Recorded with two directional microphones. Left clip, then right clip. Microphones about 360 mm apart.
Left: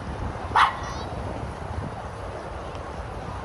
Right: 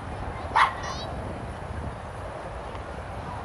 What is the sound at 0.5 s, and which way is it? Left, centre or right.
Dog, left.